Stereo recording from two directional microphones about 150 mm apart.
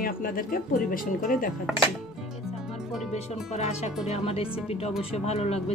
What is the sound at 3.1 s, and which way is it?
Speech, 45° left (ahead or behind).